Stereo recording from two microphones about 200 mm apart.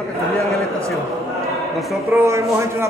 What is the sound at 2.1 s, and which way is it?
Speech, 15° right (ahead or behind).